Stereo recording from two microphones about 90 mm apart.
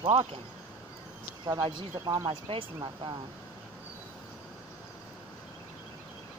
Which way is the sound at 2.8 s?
55° right (ahead or behind).